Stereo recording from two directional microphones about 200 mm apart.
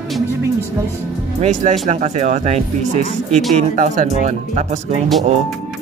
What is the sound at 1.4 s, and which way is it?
Speech, 35° right (ahead or behind).